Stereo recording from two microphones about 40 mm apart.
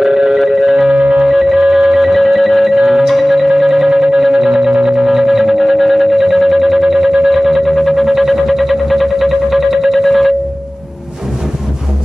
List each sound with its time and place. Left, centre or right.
0.0 s music: centre
0.9 s music: right
1.2 s music: centre
2.1 s music: centre